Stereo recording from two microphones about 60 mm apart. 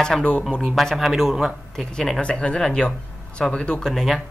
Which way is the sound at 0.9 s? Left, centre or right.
Centre.